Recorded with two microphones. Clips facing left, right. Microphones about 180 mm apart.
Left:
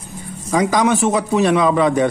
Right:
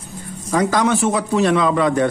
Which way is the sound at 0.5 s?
15° left (ahead or behind).